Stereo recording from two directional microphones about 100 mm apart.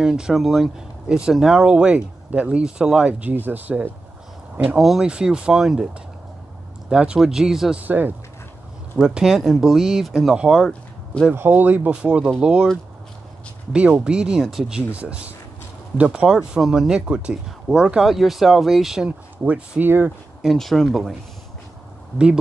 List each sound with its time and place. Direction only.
0.0 s speech: 5° right (ahead or behind)
4.7 s speech: 5° right (ahead or behind)
7.8 s speech: 20° right (ahead or behind)
11.3 s speech: 20° right (ahead or behind)
13.7 s speech: 10° right (ahead or behind)
15.0 s speech: 15° right (ahead or behind)
20.4 s speech: 5° left (ahead or behind)